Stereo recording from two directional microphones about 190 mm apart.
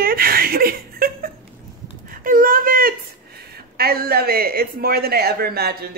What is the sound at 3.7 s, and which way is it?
Speech, 55° right (ahead or behind).